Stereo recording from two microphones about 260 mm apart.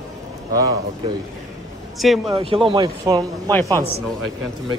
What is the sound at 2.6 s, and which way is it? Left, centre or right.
Speech, centre.